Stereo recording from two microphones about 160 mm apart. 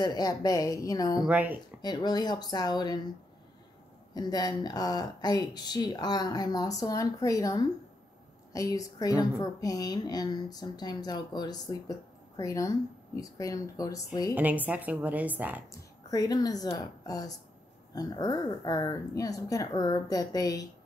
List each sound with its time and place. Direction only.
0.0 s speech: 25° left (ahead or behind)
1.2 s a woman's voice: 10° right (ahead or behind)
1.8 s speech: 25° left (ahead or behind)
4.1 s speech: 25° left (ahead or behind)
14.3 s a woman's voice: 10° right (ahead or behind)
16.1 s speech: 25° left (ahead or behind)